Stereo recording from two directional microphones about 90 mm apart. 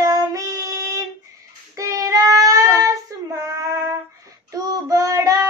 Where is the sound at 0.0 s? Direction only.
45° right (ahead or behind).